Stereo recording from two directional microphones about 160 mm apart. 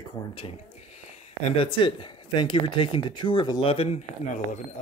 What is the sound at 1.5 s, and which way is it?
Speech, 30° left (ahead or behind).